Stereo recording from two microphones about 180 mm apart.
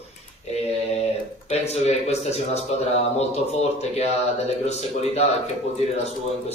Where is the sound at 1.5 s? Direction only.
35° left (ahead or behind).